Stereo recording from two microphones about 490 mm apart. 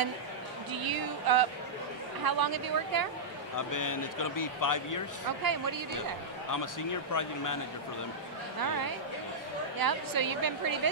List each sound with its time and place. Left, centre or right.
0.7 s a woman's voice: right
3.5 s a man's voice: left
5.4 s a woman's voice: right
6.5 s a man's voice: left
9.8 s a woman's voice: right